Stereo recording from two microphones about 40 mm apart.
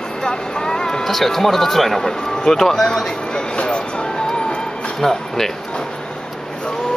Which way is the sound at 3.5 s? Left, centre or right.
Left.